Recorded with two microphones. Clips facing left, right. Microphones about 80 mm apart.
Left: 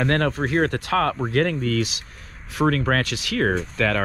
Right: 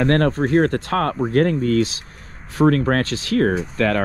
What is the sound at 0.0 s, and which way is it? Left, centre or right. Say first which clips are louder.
Speech: right 4 dB; right.